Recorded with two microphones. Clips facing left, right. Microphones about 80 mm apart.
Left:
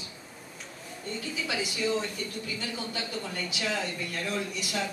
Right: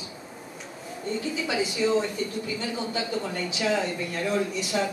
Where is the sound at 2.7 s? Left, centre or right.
Centre.